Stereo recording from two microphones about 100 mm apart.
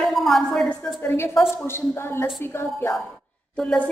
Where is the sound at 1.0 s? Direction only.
25° left (ahead or behind).